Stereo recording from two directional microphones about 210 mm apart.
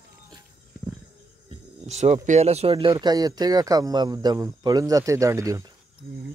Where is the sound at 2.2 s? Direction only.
30° right (ahead or behind); by 5.7 s 15° right (ahead or behind).